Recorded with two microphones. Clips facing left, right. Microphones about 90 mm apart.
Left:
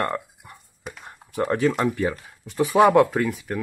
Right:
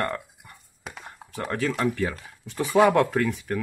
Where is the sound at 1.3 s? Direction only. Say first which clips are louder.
Left 6 dB; 20° left (ahead or behind).